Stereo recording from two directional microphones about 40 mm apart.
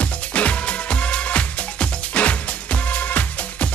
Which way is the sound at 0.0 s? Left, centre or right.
Left.